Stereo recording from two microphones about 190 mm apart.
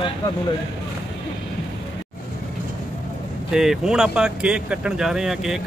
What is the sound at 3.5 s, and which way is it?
Speech, 5° right (ahead or behind).